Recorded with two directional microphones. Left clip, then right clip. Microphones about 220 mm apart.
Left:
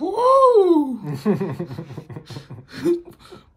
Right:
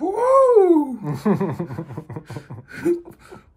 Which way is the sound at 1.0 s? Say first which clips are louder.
Right 1 dB; 15° right (ahead or behind).